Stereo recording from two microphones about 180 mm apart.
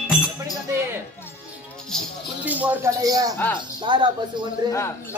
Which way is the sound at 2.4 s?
10° right (ahead or behind).